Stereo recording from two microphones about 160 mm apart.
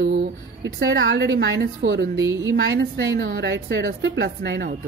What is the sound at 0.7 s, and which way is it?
A woman's voice, 90° right.